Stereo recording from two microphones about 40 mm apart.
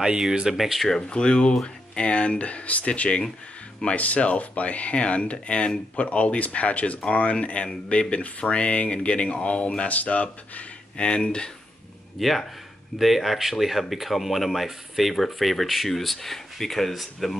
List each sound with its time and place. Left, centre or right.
0.2 s speech: centre
0.8 s speech: centre
12.2 s speech: centre